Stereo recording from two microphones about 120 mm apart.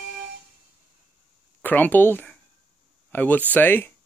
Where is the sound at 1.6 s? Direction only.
15° left (ahead or behind).